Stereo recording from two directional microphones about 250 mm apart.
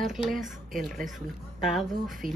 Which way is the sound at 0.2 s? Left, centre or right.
Left.